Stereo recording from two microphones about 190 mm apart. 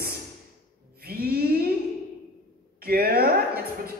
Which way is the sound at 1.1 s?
55° right (ahead or behind).